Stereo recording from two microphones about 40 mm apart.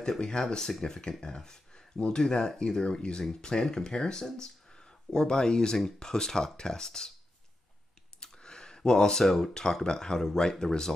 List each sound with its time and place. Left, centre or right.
0.2 s speech: centre
8.2 s speech: centre